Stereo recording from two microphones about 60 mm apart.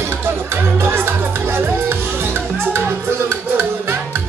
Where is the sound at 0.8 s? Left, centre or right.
Right.